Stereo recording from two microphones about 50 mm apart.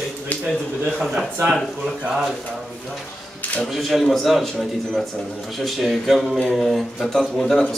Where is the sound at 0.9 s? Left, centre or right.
Centre.